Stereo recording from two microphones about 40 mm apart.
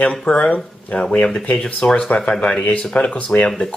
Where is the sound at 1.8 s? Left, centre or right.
Left.